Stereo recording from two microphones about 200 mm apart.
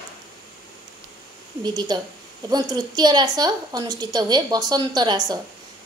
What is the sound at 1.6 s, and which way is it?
A woman's voice, 20° right (ahead or behind).